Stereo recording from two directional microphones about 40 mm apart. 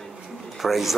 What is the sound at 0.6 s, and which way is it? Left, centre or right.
Speech, centre.